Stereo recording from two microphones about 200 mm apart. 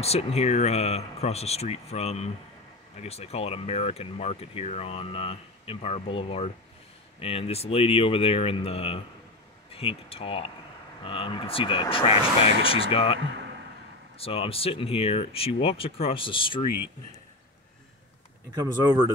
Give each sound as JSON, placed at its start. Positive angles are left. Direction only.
{"t": 0.0, "sound": "speech", "side_deg": 30}
{"t": 18.5, "sound": "speech", "side_deg": -20}